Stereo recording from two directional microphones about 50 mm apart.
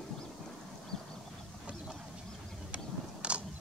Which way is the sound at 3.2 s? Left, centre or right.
Right.